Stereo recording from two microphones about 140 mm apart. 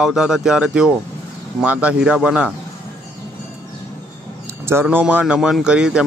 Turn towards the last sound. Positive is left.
turn(degrees=-5)  # may be behind; listen again after turning